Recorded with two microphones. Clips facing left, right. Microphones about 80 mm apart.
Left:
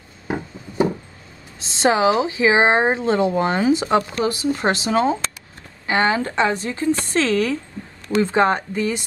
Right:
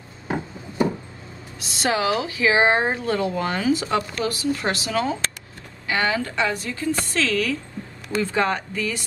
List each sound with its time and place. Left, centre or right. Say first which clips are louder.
1.6 s a woman's voice: left 6 dB; left